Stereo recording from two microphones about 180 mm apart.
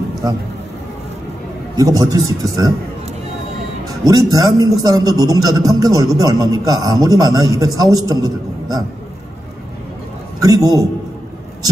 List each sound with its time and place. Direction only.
1.8 s a man's voice: 20° right (ahead or behind)
4.0 s a man's voice: 20° right (ahead or behind)
10.4 s a man's voice: 20° right (ahead or behind)